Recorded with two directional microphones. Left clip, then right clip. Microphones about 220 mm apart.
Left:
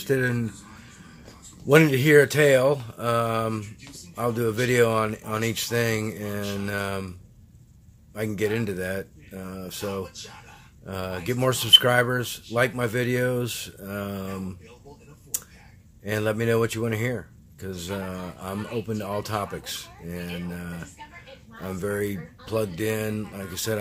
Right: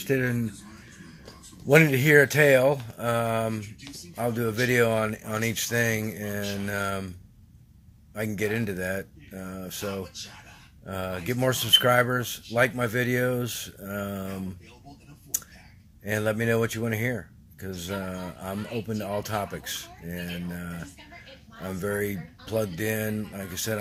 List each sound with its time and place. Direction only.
0.0 s speech: 10° left (ahead or behind)
1.7 s speech: 5° left (ahead or behind)
8.1 s speech: 10° left (ahead or behind)
10.9 s speech: 10° left (ahead or behind)
16.0 s speech: 5° left (ahead or behind)